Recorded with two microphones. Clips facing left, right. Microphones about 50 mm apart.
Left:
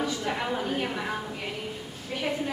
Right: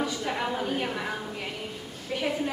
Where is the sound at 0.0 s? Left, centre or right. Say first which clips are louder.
Even; centre.